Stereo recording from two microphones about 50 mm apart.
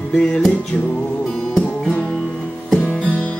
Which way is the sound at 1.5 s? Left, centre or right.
Centre.